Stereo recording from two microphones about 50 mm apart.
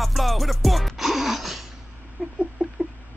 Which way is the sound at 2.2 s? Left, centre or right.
Centre.